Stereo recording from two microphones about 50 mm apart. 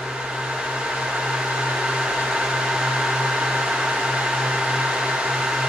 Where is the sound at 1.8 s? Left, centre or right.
Centre.